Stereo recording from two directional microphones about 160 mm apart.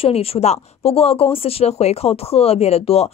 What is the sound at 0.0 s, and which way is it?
Speech, 40° left (ahead or behind).